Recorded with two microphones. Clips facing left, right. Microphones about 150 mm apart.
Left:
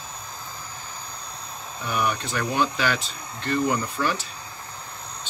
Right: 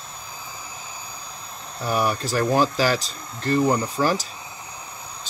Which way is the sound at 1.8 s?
35° right (ahead or behind).